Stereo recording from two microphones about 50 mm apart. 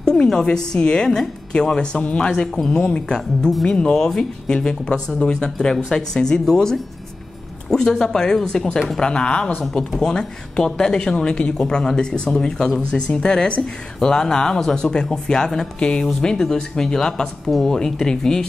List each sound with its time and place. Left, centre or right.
0.0 s a woman's voice: centre
17.7 s a woman's voice: centre